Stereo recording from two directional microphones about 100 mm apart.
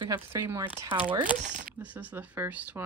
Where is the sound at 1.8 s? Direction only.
15° right (ahead or behind).